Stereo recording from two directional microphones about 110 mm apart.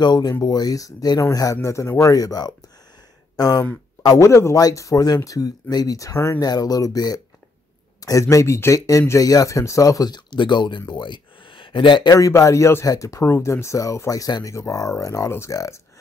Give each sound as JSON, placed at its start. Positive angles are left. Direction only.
{"t": 0.0, "sound": "speech", "side_deg": 40}
{"t": 6.4, "sound": "speech", "side_deg": 35}
{"t": 12.1, "sound": "speech", "side_deg": 30}